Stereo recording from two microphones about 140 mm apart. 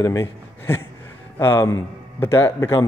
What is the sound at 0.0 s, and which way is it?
A man's voice, 20° left (ahead or behind).